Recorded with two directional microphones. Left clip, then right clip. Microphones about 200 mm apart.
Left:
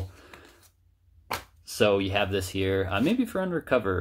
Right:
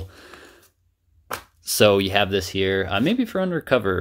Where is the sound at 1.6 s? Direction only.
50° right (ahead or behind).